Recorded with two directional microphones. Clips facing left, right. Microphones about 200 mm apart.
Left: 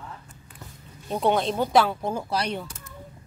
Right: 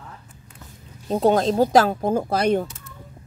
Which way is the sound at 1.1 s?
40° right (ahead or behind).